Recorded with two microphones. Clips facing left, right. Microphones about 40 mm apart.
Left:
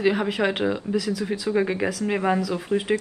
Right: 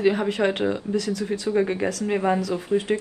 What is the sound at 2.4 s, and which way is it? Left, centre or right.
Speech, centre.